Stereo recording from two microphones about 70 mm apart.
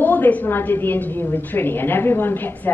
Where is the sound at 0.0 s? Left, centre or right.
Left.